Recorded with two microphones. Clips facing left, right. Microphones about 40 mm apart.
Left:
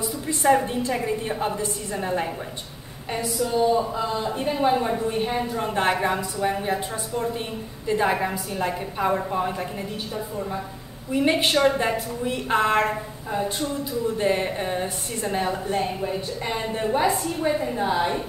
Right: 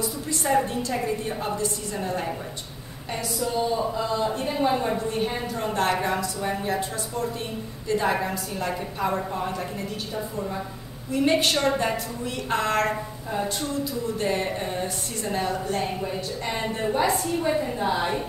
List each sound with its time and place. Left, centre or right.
0.3 s a woman's voice: left
3.3 s a woman's voice: centre
11.1 s a woman's voice: centre
14.1 s a woman's voice: left; by 18.2 s centre